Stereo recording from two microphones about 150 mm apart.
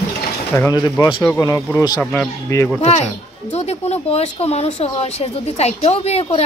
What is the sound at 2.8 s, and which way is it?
Speech, 50° left (ahead or behind).